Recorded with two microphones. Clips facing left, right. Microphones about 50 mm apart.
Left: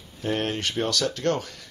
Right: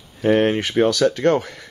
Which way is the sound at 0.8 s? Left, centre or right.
Right.